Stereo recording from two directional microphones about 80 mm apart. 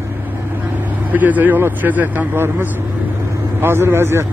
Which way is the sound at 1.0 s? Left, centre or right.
Right.